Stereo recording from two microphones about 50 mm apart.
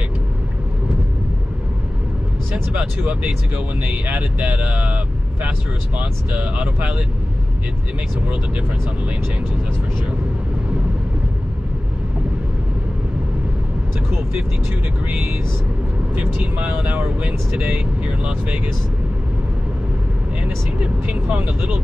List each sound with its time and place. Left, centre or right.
2.5 s speech: right
3.8 s speech: right
16.2 s speech: right
18.0 s speech: right
20.4 s speech: right